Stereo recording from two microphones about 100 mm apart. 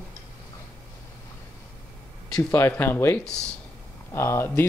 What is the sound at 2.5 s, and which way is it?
Speech, 20° left (ahead or behind).